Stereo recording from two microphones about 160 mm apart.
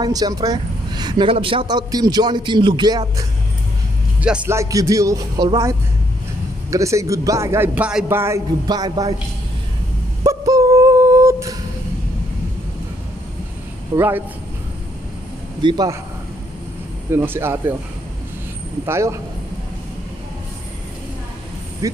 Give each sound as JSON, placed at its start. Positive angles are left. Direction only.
{"t": 0.0, "sound": "speech", "side_deg": -25}
{"t": 4.2, "sound": "speech", "side_deg": -10}
{"t": 10.2, "sound": "a sound", "side_deg": -20}
{"t": 13.9, "sound": "speech", "side_deg": -15}
{"t": 15.6, "sound": "speech", "side_deg": -25}
{"t": 17.1, "sound": "speech", "side_deg": -15}
{"t": 18.9, "sound": "speech", "side_deg": -15}
{"t": 21.8, "sound": "speech", "side_deg": -20}